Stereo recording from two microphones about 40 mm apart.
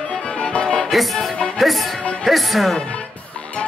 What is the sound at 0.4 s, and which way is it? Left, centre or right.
Music, left.